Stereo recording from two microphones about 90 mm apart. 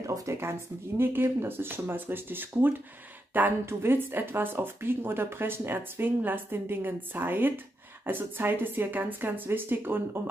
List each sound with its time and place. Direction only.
0.0 s speech: 35° right (ahead or behind)